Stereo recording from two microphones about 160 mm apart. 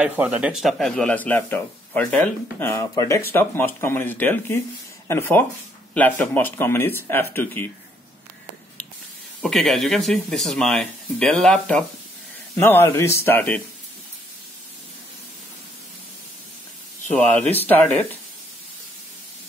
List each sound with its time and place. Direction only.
0.0 s a man's voice: 10° right (ahead or behind); by 7.7 s 10° left (ahead or behind)
9.4 s a man's voice: 5° left (ahead or behind)
17.1 s a man's voice: 10° left (ahead or behind)